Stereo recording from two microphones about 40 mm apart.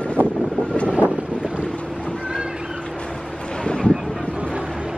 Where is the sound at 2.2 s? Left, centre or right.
Right.